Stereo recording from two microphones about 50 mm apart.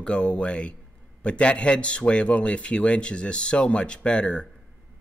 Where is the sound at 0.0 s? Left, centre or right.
Left.